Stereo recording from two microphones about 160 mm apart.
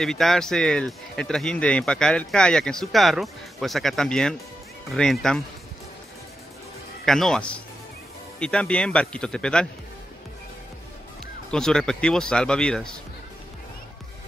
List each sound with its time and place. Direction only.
0.0 s speech: centre (ahead or behind)
7.1 s speech: centre (ahead or behind)
11.5 s speech: 5° left (ahead or behind)